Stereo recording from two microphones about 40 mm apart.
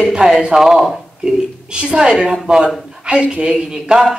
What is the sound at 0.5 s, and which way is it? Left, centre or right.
Speech, centre.